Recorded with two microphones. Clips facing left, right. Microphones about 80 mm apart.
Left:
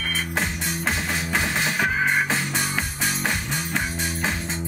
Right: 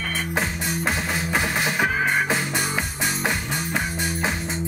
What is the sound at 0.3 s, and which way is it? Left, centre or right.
Music, centre.